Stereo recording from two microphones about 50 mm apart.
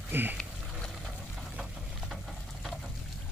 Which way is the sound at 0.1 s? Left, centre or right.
Right.